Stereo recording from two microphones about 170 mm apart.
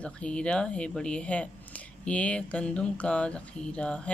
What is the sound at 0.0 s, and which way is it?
Speech, 5° left (ahead or behind).